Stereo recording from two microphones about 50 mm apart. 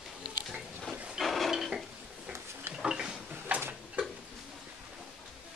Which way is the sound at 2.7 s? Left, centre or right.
Centre.